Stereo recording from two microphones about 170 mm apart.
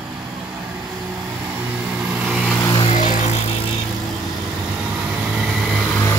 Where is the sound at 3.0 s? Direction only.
50° left (ahead or behind).